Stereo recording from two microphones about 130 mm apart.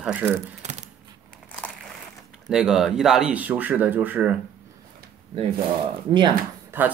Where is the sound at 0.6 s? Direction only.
60° right (ahead or behind).